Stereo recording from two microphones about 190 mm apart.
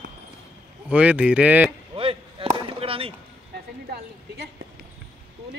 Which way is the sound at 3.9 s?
60° right (ahead or behind).